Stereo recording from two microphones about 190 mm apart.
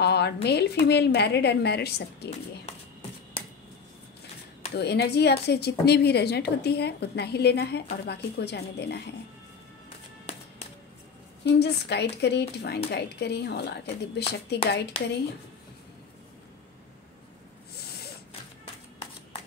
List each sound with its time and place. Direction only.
0.0 s a woman's voice: 60° left (ahead or behind)
4.7 s a woman's voice: 60° left (ahead or behind)
11.4 s a woman's voice: 60° left (ahead or behind)